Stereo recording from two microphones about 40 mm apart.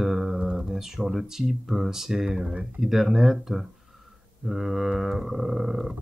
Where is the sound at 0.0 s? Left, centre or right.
Centre.